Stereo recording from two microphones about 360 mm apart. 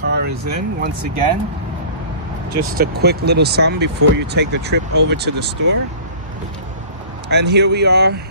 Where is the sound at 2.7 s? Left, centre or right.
Right.